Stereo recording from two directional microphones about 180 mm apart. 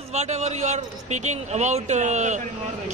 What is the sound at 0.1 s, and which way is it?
A man's voice, 40° right (ahead or behind).